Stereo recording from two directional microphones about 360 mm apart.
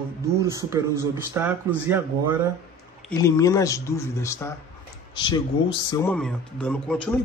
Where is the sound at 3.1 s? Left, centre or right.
Centre.